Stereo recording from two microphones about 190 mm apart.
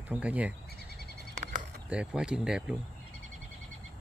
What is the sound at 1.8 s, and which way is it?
Speech, 5° right (ahead or behind).